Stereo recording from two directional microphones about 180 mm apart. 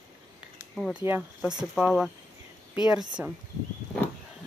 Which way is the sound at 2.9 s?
25° right (ahead or behind).